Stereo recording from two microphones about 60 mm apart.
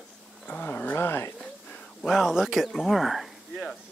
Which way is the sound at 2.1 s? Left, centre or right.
Centre.